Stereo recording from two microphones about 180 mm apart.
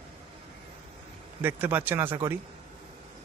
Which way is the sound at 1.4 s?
10° right (ahead or behind).